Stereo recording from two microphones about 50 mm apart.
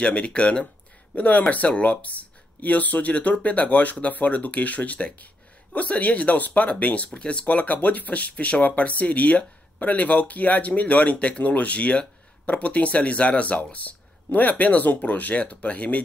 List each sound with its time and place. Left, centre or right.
0.0 s speech: left
1.1 s speech: left
7.4 s speech: left